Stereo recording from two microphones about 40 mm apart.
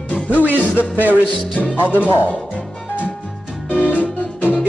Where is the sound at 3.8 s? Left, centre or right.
Left.